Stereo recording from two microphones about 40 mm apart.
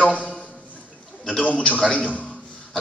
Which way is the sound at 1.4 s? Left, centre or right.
Left.